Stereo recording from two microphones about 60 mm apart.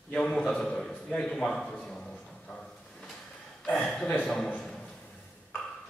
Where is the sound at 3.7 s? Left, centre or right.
Centre.